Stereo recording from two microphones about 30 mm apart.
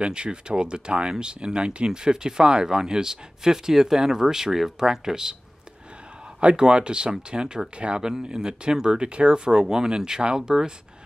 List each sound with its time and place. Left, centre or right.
0.0 s speech: right
1.9 s speech: right
6.4 s speech: right